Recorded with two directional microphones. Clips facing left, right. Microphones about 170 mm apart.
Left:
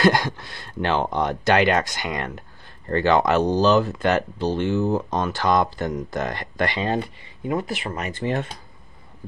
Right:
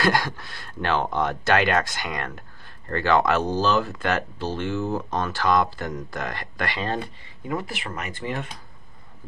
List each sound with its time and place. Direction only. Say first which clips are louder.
0.0 s speech: left 4 dB; 20° left (ahead or behind)